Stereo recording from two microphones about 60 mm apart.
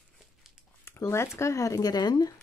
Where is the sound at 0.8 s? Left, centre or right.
Left.